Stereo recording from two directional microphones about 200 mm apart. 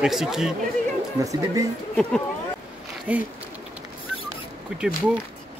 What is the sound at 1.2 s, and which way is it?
Speech, 15° right (ahead or behind).